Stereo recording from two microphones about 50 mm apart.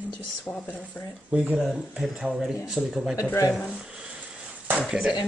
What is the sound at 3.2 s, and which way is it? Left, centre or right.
Speech, left.